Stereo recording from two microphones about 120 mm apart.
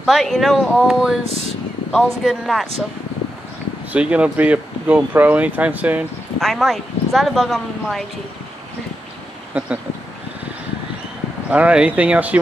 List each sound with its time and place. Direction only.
0.0 s speech: centre (ahead or behind)
1.2 s speech: 55° right (ahead or behind)
1.9 s speech: centre (ahead or behind)
3.9 s speech: 10° right (ahead or behind)
6.4 s speech: centre (ahead or behind)
9.5 s speech: 10° right (ahead or behind)
11.5 s speech: 10° right (ahead or behind)